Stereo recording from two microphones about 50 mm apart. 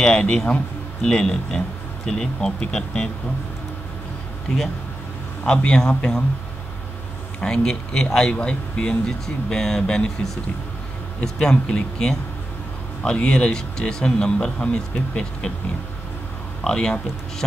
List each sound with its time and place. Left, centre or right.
0.0 s speech: centre
5.5 s speech: centre
7.3 s speech: centre
11.2 s speech: centre
16.6 s speech: centre